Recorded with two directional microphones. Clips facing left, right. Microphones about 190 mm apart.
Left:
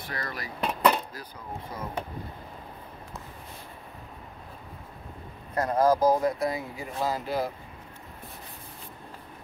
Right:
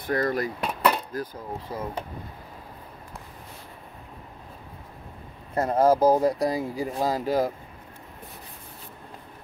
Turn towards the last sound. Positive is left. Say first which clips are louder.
# right 5 dB
turn(degrees=-40)  # may be behind; listen again after turning